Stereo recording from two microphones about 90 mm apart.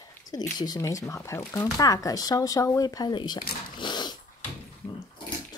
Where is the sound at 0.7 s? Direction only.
35° left (ahead or behind); by 4.2 s 55° left (ahead or behind).